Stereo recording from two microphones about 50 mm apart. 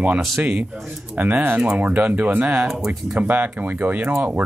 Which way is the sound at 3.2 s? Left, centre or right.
Right.